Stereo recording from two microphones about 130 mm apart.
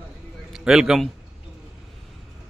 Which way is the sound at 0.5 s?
5° right (ahead or behind).